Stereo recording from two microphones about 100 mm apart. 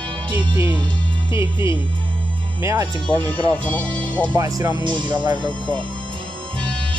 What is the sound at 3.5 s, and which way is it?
Speech, 15° left (ahead or behind).